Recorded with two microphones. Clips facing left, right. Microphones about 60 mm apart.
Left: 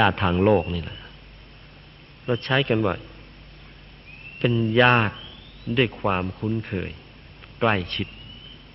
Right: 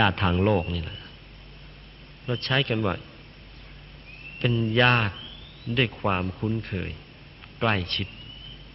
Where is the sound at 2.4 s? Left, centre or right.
Centre.